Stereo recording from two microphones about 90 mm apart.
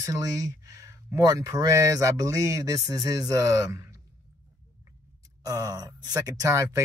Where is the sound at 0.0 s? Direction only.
40° right (ahead or behind).